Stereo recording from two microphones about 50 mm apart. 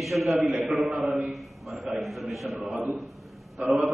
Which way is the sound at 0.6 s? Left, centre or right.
Centre.